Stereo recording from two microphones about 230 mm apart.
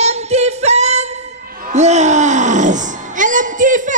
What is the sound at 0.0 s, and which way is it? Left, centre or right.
Music, right.